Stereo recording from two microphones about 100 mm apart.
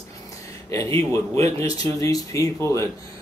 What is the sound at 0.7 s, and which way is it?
Speech, 30° left (ahead or behind).